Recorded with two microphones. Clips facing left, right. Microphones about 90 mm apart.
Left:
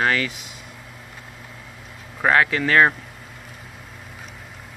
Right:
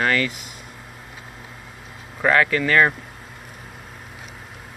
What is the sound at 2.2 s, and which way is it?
Speech, 20° left (ahead or behind).